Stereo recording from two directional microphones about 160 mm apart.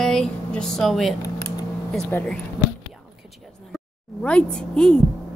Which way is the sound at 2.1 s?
15° left (ahead or behind).